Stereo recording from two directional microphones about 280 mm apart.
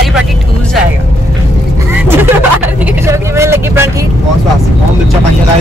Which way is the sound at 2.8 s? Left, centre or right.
Centre.